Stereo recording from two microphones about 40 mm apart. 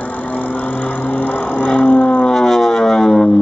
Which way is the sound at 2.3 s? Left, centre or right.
Centre.